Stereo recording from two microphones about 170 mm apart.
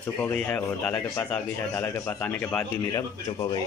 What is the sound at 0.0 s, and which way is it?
Speech, 10° left (ahead or behind).